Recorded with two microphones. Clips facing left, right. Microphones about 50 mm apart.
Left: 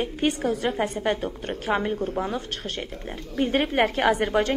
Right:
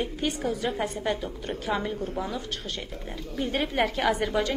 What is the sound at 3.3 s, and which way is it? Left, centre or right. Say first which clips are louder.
A woman's voice: left 5 dB; left.